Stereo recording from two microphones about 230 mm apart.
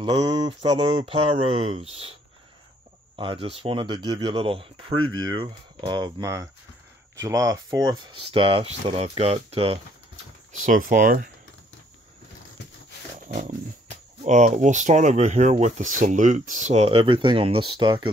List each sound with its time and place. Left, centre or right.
0.0 s mantra: centre
0.4 s speech: right
3.2 s speech: right
10.5 s speech: right
13.3 s speech: right